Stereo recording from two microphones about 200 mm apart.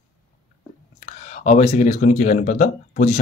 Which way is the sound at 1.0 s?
35° left (ahead or behind).